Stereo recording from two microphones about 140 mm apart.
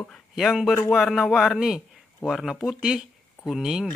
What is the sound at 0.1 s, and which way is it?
Speech, centre (ahead or behind).